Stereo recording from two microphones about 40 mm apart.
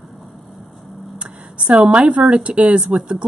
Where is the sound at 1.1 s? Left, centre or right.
Right.